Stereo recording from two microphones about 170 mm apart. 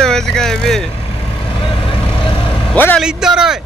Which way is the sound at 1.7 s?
30° left (ahead or behind).